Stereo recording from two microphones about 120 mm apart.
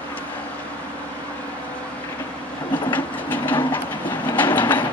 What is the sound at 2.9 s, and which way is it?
Train, 15° left (ahead or behind).